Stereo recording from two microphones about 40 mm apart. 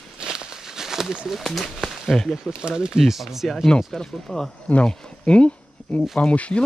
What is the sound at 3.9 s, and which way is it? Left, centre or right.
Speech, centre.